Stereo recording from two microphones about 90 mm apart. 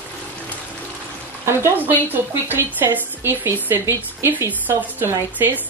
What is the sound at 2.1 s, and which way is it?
A woman's voice, 25° right (ahead or behind).